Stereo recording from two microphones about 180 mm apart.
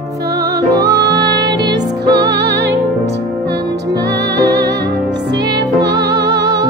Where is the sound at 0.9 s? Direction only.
70° right (ahead or behind).